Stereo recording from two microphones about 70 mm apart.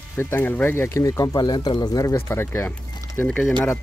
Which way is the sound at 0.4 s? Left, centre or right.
Left.